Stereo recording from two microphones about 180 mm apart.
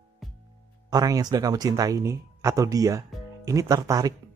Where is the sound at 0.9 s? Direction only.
20° right (ahead or behind).